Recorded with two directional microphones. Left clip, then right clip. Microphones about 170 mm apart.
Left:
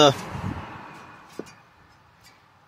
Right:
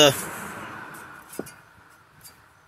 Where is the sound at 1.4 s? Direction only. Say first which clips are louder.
Right 2 dB; 25° right (ahead or behind).